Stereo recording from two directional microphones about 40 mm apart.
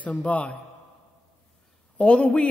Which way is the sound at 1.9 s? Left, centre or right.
Left.